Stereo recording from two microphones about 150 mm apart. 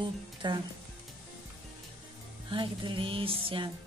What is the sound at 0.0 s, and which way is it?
Speech, 30° right (ahead or behind).